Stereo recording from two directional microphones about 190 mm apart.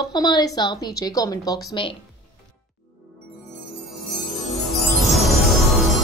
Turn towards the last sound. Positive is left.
turn(degrees=0)  # may be behind; listen again after turning